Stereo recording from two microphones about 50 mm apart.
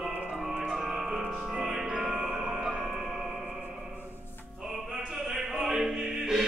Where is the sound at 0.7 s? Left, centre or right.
Centre.